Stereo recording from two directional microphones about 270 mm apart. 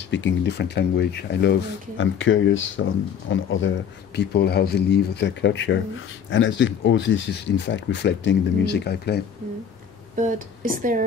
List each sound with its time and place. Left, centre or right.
0.1 s speech: left
10.1 s speech: right